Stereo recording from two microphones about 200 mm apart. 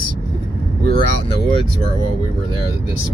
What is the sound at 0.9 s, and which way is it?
Speech, 45° right (ahead or behind).